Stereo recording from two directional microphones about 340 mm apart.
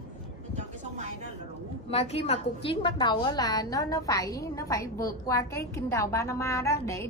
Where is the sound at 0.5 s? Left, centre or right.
Right.